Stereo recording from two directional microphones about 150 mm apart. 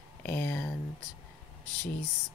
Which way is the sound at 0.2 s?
15° left (ahead or behind).